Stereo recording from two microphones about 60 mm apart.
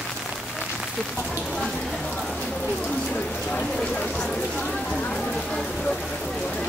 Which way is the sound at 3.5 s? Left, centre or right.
Centre.